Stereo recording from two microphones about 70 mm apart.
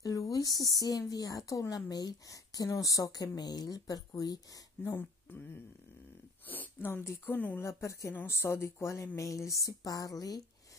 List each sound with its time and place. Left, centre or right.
0.0 s speech: left
4.8 s speech: left
7.6 s speech: left
8.1 s speech: left